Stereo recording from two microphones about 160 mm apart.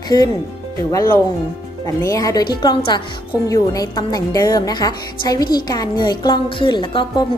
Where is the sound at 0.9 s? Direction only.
25° left (ahead or behind).